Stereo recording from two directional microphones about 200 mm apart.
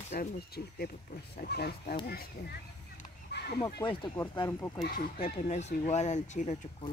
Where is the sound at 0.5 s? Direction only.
50° left (ahead or behind).